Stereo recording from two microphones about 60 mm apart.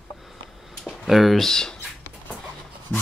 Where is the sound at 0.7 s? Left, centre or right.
Centre.